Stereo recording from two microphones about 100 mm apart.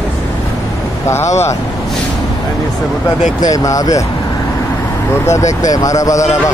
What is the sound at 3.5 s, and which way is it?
Speech, 35° left (ahead or behind).